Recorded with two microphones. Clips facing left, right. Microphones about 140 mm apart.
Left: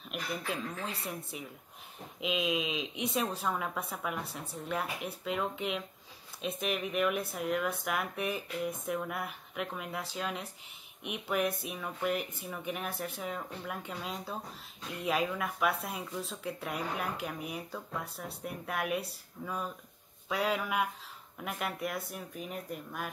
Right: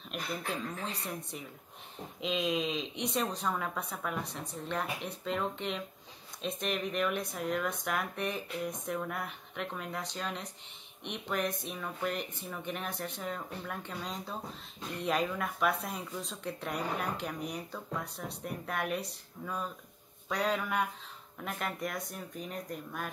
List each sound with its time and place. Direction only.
0.1 s speech: 5° left (ahead or behind)